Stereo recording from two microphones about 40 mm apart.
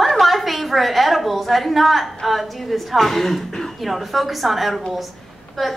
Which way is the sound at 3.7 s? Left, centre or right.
Centre.